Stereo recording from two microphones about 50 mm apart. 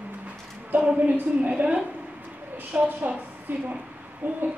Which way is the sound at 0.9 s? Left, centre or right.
Right.